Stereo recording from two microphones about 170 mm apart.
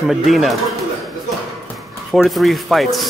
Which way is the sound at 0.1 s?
Centre (ahead or behind).